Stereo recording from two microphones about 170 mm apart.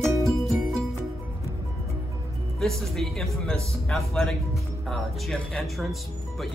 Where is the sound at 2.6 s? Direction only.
Centre (ahead or behind).